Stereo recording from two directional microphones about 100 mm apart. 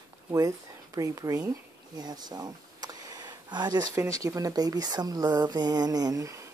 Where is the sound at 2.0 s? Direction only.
45° right (ahead or behind).